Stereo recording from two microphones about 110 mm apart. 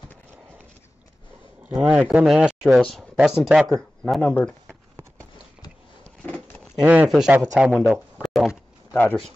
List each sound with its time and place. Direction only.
1.6 s speech: 10° right (ahead or behind); by 4.2 s 5° left (ahead or behind)
4.2 s speech: 15° left (ahead or behind)
6.8 s speech: 15° right (ahead or behind)
8.9 s speech: 15° left (ahead or behind)